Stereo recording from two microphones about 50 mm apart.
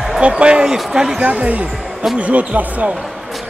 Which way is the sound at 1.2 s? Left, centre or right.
Right.